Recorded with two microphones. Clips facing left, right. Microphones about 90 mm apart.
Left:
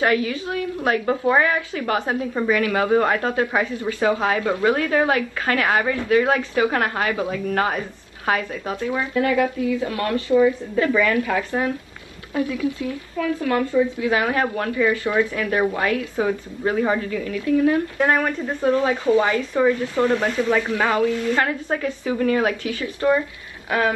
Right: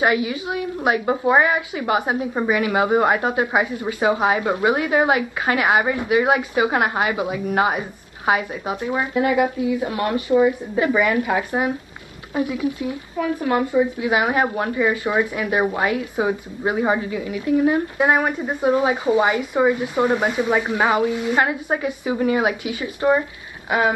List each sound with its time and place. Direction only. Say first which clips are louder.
0.0 s a woman's voice: right 1 dB; 15° right (ahead or behind)